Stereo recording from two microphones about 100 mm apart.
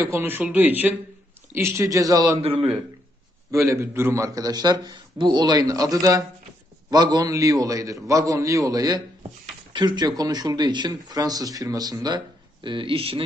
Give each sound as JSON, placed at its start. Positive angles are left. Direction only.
{"t": 0.0, "sound": "a man's voice", "side_deg": -25}
{"t": 2.4, "sound": "a man's voice", "side_deg": -70}
{"t": 3.5, "sound": "a man's voice", "side_deg": -30}
{"t": 12.6, "sound": "speech", "side_deg": -60}